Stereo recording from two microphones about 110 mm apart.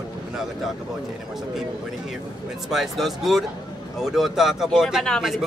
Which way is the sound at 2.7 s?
Centre (ahead or behind).